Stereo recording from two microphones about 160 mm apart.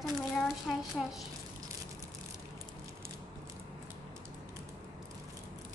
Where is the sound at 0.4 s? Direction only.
Centre (ahead or behind).